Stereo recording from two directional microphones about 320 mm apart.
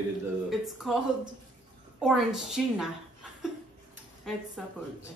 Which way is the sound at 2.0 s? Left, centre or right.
Centre.